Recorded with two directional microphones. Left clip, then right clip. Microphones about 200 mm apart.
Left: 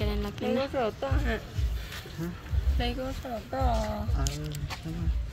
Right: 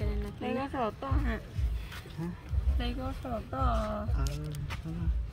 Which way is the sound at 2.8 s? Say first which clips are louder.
Left 5 dB; 40° right (ahead or behind).